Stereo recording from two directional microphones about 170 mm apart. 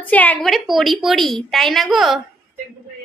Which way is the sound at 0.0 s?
10° left (ahead or behind).